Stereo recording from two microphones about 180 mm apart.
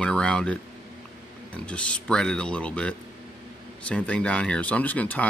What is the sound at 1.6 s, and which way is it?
Speech, 5° left (ahead or behind).